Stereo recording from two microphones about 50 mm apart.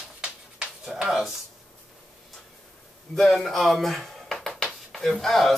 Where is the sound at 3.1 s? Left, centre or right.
Centre.